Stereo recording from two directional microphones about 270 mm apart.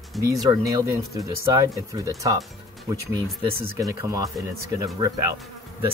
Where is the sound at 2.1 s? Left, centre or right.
Centre.